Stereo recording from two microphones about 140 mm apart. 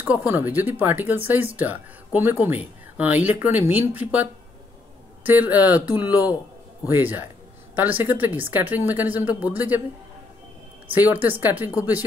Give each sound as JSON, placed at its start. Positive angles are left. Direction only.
{"t": 0.0, "sound": "speech", "side_deg": -15}
{"t": 11.0, "sound": "speech", "side_deg": -15}